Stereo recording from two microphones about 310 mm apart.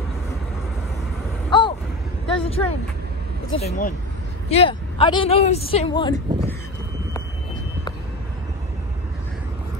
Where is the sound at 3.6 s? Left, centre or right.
Left.